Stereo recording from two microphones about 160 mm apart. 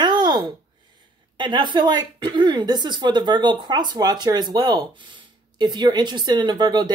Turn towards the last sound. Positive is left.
turn(degrees=-25)  # may be behind; listen again after turning